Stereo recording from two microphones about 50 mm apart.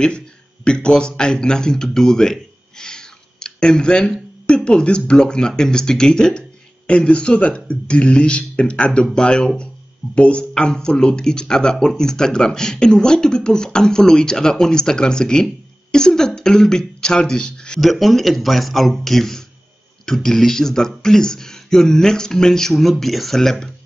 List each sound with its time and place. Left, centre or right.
0.7 s a man's voice: centre
17.7 s speech: centre